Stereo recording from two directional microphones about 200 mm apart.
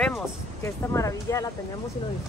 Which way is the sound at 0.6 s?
15° left (ahead or behind).